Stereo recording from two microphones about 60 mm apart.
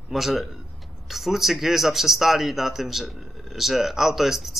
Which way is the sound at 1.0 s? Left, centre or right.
Centre.